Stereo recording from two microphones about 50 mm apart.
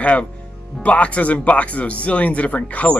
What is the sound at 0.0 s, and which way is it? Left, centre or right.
Speech, left.